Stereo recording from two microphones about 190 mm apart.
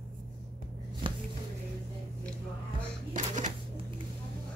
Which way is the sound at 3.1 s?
40° right (ahead or behind).